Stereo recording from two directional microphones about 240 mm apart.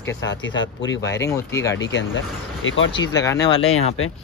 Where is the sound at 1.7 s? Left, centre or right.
Left.